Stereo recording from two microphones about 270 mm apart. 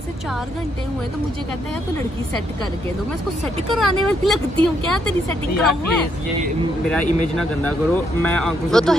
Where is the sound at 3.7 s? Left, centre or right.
Centre.